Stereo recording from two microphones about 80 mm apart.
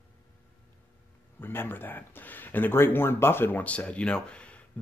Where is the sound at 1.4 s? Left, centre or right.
Left.